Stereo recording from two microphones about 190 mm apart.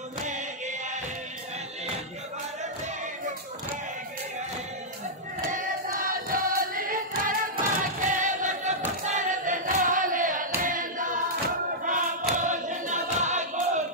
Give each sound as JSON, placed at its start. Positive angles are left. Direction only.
{"t": 5.5, "sound": "choir", "side_deg": -45}
{"t": 8.0, "sound": "a sound", "side_deg": -40}
{"t": 11.8, "sound": "choir", "side_deg": -40}